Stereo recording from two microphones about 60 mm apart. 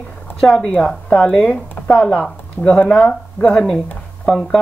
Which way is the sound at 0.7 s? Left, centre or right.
Centre.